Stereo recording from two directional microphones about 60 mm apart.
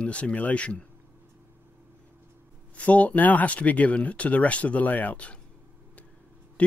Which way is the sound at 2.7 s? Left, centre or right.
Left.